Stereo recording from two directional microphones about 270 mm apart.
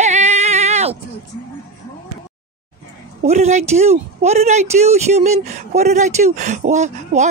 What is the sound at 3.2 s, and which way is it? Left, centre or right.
Speech, right.